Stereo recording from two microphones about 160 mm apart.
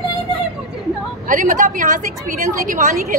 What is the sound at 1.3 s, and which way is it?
A woman's voice, 55° right (ahead or behind).